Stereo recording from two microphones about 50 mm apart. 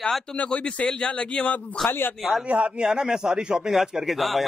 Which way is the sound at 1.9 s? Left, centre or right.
Left.